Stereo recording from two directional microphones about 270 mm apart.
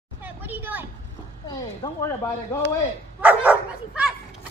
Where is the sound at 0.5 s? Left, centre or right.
Centre.